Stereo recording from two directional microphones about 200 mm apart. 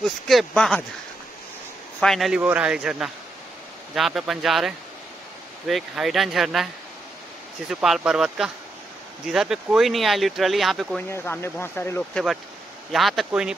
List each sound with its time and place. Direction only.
0.3 s speech: centre (ahead or behind)
2.0 s speech: centre (ahead or behind)
11.1 s speech: 10° left (ahead or behind)